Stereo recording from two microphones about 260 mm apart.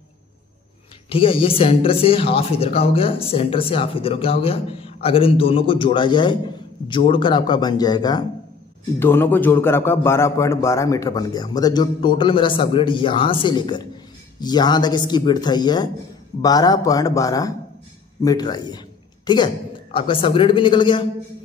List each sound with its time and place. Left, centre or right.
1.0 s a man's voice: left